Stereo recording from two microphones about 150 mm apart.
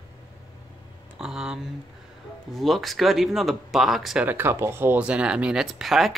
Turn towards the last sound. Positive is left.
turn(degrees=0)  # may be behind; listen again after turning